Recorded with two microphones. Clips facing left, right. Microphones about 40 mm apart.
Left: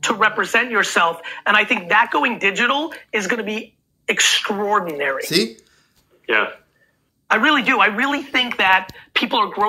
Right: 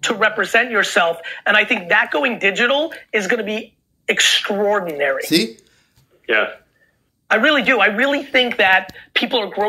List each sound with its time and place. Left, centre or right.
0.0 s speech: right
4.8 s speech: centre